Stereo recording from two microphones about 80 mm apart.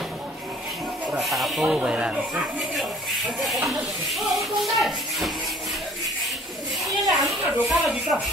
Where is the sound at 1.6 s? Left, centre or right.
Centre.